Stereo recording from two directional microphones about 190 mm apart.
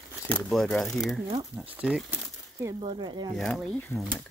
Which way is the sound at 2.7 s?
25° right (ahead or behind).